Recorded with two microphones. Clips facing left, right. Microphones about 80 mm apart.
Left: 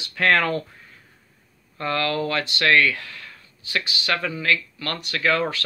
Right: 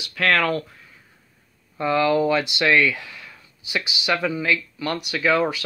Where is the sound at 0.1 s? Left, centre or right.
Centre.